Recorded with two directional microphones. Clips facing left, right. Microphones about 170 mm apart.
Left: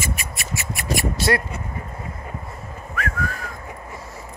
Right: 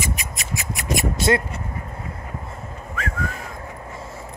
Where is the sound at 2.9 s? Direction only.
25° right (ahead or behind).